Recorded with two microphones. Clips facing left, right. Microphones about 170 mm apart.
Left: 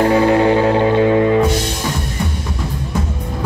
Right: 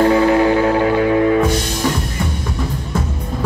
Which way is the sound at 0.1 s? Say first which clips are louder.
Even; 20° left (ahead or behind).